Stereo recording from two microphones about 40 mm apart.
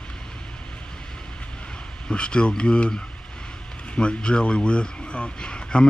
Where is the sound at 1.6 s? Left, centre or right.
Left.